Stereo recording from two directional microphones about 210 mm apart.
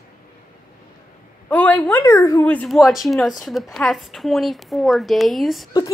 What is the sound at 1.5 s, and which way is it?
A woman's voice, 5° left (ahead or behind).